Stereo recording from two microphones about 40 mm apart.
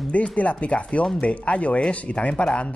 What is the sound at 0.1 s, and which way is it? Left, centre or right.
Speech, left.